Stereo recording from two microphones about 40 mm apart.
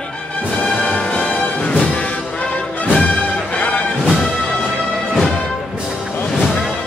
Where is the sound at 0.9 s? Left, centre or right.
Left.